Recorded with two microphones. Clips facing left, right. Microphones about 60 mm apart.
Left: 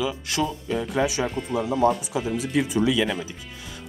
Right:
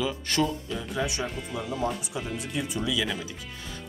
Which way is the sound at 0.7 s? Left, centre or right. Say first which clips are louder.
Left 7 dB; left.